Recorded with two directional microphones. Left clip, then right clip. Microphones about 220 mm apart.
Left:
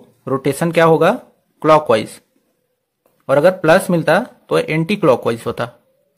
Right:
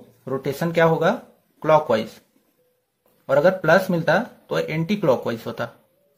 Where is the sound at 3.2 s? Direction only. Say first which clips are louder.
Left 5 dB; 35° left (ahead or behind).